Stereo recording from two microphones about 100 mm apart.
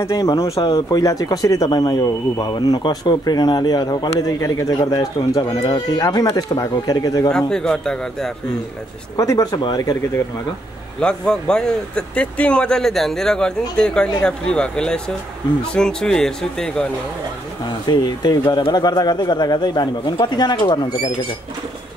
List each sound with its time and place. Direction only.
0.0 s speech: 35° left (ahead or behind)
4.1 s speech: 30° left (ahead or behind)
4.7 s speech: 45° left (ahead or behind)
7.2 s speech: 5° left (ahead or behind)
9.1 s speech: 35° left (ahead or behind)
11.0 s speech: 10° left (ahead or behind)
17.8 s speech: 45° left (ahead or behind)